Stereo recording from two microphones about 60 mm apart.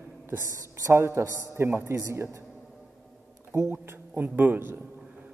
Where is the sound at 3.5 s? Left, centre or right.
Right.